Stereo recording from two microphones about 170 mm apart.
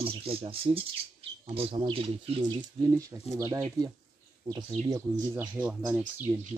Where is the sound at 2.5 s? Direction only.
20° right (ahead or behind).